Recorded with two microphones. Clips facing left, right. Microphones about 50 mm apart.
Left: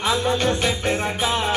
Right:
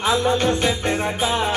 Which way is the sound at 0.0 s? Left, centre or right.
Right.